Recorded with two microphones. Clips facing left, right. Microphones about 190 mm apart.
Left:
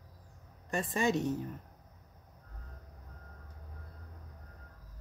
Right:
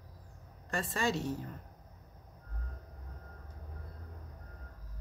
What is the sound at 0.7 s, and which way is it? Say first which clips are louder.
Speech: left 3 dB; 20° left (ahead or behind).